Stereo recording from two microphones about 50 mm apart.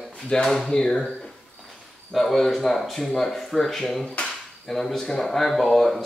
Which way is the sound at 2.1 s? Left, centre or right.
Centre.